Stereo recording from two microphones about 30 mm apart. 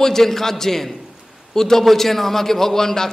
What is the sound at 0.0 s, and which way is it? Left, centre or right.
A man's voice, centre.